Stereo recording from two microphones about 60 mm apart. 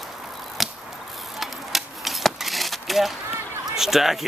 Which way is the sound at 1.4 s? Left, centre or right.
Centre.